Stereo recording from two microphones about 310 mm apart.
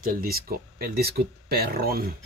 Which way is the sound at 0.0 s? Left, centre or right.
Right.